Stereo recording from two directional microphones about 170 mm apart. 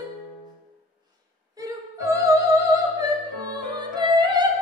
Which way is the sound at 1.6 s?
20° right (ahead or behind).